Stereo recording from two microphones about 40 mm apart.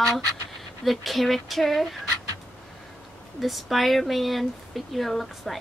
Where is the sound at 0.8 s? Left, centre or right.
Centre.